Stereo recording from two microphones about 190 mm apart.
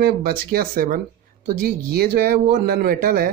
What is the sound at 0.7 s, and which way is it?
Speech, 45° right (ahead or behind).